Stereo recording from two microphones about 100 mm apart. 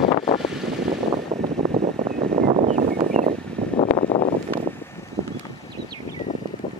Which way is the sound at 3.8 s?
85° left.